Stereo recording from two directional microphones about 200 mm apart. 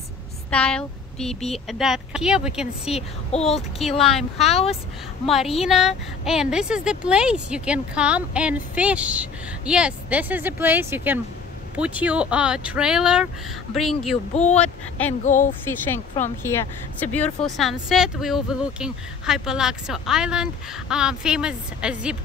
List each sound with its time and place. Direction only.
0.5 s speech: 5° left (ahead or behind)
2.9 s speech: 30° left (ahead or behind)
4.0 s speech: centre (ahead or behind)
4.5 s speech: 30° left (ahead or behind)
5.6 s speech: centre (ahead or behind)
14.3 s speech: 35° left (ahead or behind)
14.6 s speech: 10° left (ahead or behind)
15.2 s speech: 40° left (ahead or behind)
16.4 s speech: 10° left (ahead or behind)